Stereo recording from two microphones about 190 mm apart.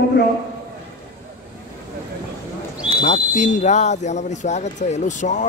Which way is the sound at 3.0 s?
35° left (ahead or behind).